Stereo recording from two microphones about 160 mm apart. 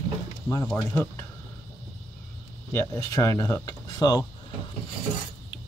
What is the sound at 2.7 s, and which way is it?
Speech, 20° left (ahead or behind).